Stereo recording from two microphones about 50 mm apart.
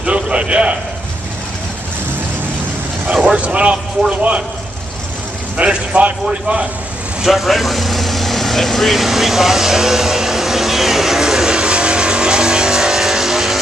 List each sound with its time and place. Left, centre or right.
0.0 s a man's voice: right
3.3 s a man's voice: right
5.6 s a man's voice: right
7.2 s vehicle: centre